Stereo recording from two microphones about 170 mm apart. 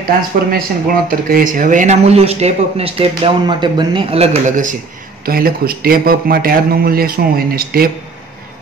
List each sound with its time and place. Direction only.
0.5 s speech: 60° right (ahead or behind)
5.2 s a man's voice: 60° right (ahead or behind)